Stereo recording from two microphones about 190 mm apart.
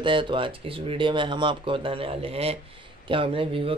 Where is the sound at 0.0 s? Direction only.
25° right (ahead or behind).